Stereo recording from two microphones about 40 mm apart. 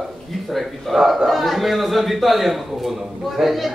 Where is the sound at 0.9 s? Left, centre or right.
Centre.